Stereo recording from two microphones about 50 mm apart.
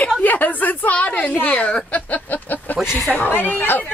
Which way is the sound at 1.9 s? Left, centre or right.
Left.